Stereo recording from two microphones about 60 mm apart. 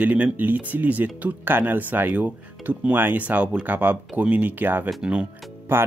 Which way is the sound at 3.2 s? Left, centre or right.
Right.